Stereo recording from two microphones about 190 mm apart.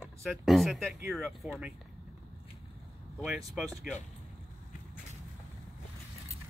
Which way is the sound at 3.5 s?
Centre (ahead or behind).